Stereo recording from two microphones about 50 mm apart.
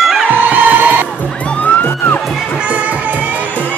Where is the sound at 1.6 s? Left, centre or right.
Left.